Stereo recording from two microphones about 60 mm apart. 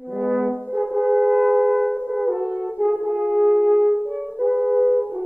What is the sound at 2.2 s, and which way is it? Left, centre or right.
French horn, right.